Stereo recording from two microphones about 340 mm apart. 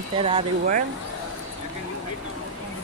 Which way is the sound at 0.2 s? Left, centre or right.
Centre.